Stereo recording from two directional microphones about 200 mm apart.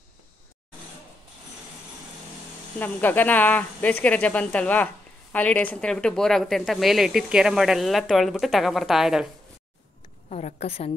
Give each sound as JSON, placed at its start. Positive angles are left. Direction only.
{"t": 2.8, "sound": "speech", "side_deg": 10}
{"t": 10.3, "sound": "a woman's voice", "side_deg": 35}